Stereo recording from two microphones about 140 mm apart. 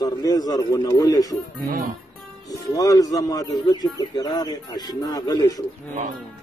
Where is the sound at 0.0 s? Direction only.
30° left (ahead or behind).